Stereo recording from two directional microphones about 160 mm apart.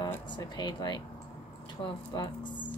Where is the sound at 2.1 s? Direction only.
30° left (ahead or behind).